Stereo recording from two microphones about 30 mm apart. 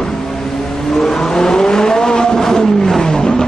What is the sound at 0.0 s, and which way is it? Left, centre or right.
Vehicle, centre.